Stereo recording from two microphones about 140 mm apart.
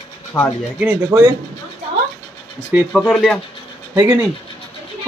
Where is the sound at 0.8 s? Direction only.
15° right (ahead or behind).